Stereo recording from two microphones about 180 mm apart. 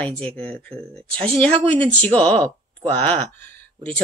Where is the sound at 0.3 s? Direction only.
5° left (ahead or behind).